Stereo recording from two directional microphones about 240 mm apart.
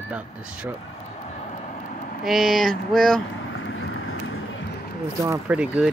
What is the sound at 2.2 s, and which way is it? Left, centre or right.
Speech, centre.